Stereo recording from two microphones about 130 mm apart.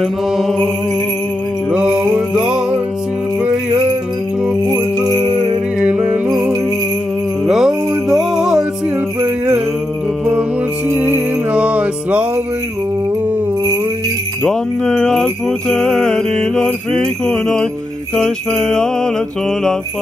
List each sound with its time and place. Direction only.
0.0 s jingle bell: centre (ahead or behind)
1.7 s music: 10° right (ahead or behind)
4.6 s jingle bell: 30° right (ahead or behind)
5.8 s music: 5° right (ahead or behind)
7.4 s music: 5° right (ahead or behind)
10.9 s music: 15° right (ahead or behind)
14.4 s jingle bell: 5° left (ahead or behind)